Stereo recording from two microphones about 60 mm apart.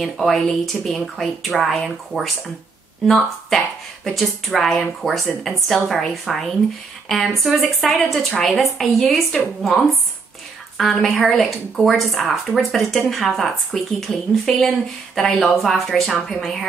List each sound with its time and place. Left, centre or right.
0.0 s a woman's voice: centre
2.1 s speech: left
3.1 s a woman's voice: centre
10.8 s a woman's voice: centre